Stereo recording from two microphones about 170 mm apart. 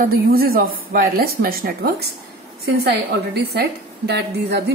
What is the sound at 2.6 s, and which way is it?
A woman's voice, 70° right (ahead or behind).